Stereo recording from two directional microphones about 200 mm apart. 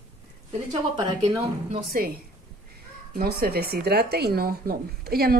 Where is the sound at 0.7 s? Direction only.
20° right (ahead or behind).